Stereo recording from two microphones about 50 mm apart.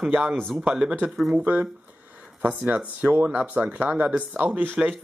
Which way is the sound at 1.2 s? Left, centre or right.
Centre.